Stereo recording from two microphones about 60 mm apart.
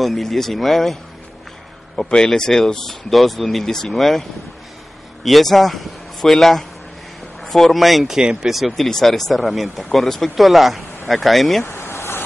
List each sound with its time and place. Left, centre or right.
0.0 s speech: centre
2.0 s speech: centre
11.6 s vehicle: left